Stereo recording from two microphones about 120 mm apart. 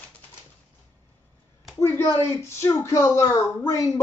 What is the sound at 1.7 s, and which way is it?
Speech, 25° left (ahead or behind).